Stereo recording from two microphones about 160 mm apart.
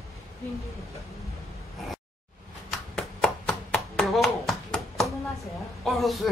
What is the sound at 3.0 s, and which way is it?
Clapping, 5° left (ahead or behind).